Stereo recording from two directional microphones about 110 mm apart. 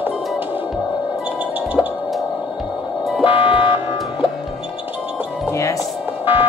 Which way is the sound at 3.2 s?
55° left (ahead or behind).